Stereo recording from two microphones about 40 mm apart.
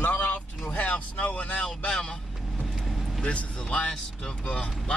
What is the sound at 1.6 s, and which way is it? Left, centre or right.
Vehicle, left.